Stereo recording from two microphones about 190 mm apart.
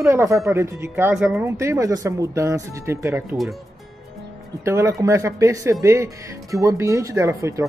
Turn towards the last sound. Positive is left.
turn(degrees=-15)  # may be behind; listen again after turning